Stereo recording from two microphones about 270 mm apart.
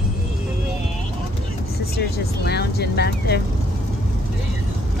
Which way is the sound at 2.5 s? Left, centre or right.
Left.